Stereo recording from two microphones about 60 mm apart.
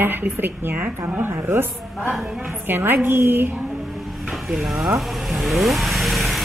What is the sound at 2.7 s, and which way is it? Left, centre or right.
Speech, right.